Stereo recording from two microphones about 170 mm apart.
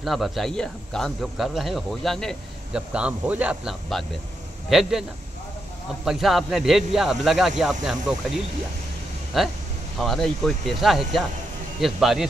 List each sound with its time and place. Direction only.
0.0 s speech: centre (ahead or behind)
6.0 s speech: centre (ahead or behind)
9.3 s speech: centre (ahead or behind)